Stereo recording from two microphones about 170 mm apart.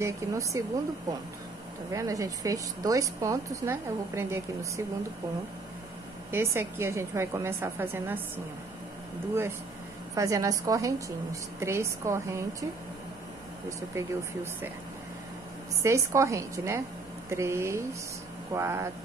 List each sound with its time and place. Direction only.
0.0 s a woman's voice: 15° right (ahead or behind)
1.9 s a woman's voice: 20° right (ahead or behind)
6.3 s a woman's voice: 15° right (ahead or behind)
10.1 s a woman's voice: 20° right (ahead or behind)
13.7 s a woman's voice: 15° right (ahead or behind)
15.8 s a woman's voice: 20° right (ahead or behind)